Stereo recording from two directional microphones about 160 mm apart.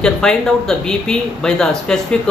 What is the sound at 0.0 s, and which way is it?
Speech, 5° left (ahead or behind).